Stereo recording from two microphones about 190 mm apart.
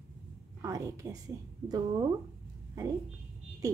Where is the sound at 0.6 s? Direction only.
15° right (ahead or behind).